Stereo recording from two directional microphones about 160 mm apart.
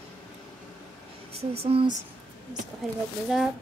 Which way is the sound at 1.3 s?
40° right (ahead or behind).